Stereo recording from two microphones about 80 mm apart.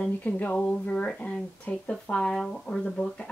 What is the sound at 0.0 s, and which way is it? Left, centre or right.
Speech, centre.